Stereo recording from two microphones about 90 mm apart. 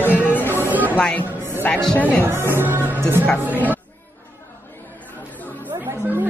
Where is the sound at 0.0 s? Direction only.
15° right (ahead or behind).